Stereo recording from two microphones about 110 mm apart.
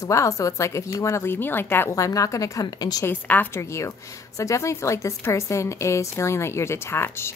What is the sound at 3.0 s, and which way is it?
A woman's voice, 15° left (ahead or behind).